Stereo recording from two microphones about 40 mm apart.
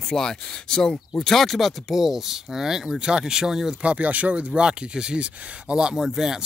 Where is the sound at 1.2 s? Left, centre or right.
Centre.